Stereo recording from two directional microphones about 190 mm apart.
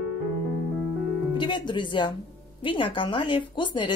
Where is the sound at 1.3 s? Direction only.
25° left (ahead or behind).